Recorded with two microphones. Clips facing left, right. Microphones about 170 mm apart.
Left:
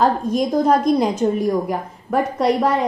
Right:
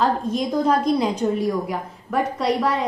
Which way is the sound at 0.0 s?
45° left (ahead or behind).